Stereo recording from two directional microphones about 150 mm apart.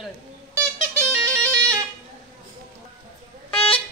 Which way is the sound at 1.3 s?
10° left (ahead or behind).